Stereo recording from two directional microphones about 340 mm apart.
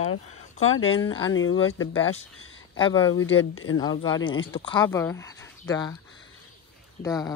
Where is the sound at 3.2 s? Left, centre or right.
Left.